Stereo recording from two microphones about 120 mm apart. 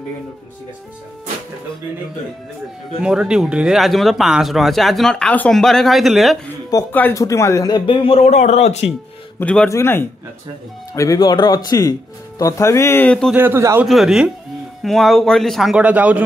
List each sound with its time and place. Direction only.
3.0 s speech: 5° right (ahead or behind)
6.9 s speech: 15° left (ahead or behind)
7.8 s speech: 45° left (ahead or behind); by 8.8 s 65° left (ahead or behind)
9.4 s speech: 10° left (ahead or behind)
9.7 s speech: 20° left (ahead or behind)
13.3 s a man's voice: 20° right (ahead or behind)
13.8 s speech: centre (ahead or behind)